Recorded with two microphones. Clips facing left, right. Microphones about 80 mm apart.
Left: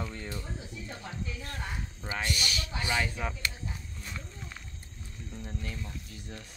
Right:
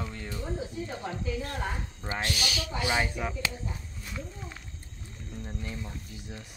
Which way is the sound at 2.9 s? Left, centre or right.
Centre.